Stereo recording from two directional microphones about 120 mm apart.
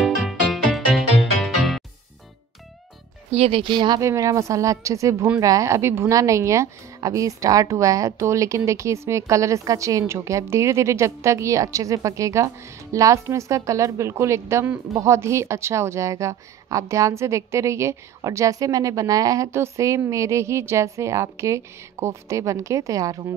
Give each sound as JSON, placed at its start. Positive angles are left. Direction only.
{"t": 0.0, "sound": "music", "side_deg": 0}
{"t": 3.3, "sound": "speech", "side_deg": -55}
{"t": 4.0, "sound": "a woman's voice", "side_deg": -25}